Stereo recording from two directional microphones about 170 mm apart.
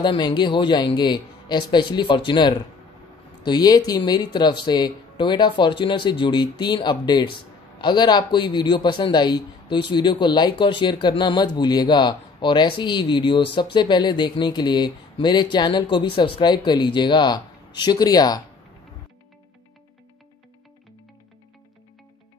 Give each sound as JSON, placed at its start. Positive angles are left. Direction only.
{"t": 0.0, "sound": "speech", "side_deg": 30}